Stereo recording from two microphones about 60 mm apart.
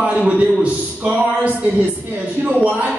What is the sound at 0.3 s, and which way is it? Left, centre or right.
A man's voice, right.